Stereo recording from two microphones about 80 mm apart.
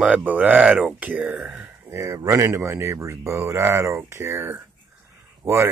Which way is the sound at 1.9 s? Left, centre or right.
Right.